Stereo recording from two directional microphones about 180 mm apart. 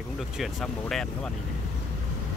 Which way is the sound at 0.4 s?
Centre (ahead or behind).